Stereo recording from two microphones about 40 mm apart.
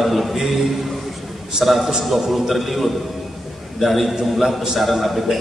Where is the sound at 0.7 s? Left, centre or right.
Centre.